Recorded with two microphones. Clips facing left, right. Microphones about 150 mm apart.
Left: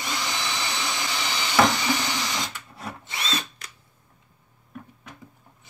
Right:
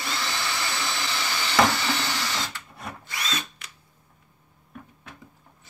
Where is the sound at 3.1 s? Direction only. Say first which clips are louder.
Left 2 dB; 30° left (ahead or behind).